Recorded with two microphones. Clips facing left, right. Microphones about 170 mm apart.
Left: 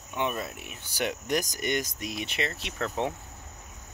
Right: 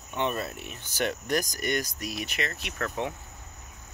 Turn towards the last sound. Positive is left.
turn(degrees=25)  # may be behind; listen again after turning